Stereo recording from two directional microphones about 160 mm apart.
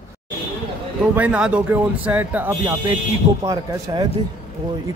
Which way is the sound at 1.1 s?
10° right (ahead or behind).